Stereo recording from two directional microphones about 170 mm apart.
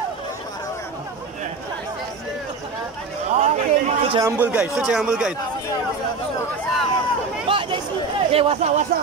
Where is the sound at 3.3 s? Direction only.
40° right (ahead or behind).